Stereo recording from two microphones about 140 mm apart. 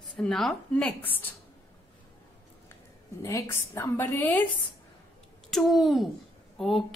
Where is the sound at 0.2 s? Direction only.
Centre (ahead or behind).